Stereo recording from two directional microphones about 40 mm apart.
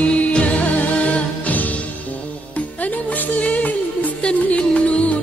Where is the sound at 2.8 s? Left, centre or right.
Left.